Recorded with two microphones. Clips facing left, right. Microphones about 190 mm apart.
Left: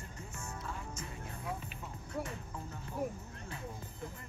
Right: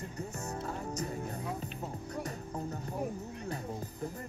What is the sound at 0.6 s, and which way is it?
Music, 40° right (ahead or behind).